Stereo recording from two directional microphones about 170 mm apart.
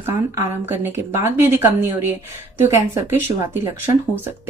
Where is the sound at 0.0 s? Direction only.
15° right (ahead or behind).